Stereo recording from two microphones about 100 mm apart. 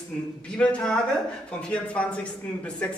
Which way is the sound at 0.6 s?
10° left (ahead or behind).